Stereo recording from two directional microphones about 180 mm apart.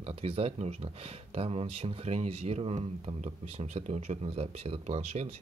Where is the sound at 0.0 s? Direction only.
35° right (ahead or behind).